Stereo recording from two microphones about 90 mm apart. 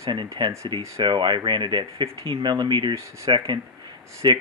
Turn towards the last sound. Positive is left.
turn(degrees=-55)  # may be behind; listen again after turning